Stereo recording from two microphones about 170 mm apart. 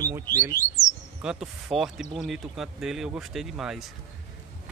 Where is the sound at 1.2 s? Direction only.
5° right (ahead or behind).